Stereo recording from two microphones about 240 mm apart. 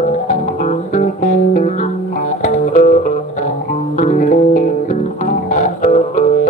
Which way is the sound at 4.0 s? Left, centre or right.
Left.